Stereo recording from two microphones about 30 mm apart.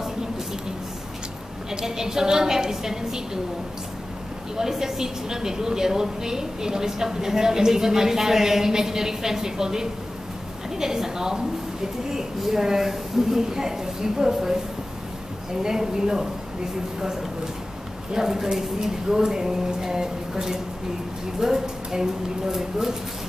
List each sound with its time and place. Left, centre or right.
1.7 s a woman's voice: centre
4.6 s a woman's voice: centre
15.6 s a woman's voice: centre
18.1 s a woman's voice: centre